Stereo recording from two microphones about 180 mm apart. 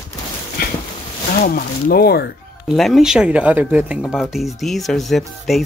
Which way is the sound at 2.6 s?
Centre (ahead or behind).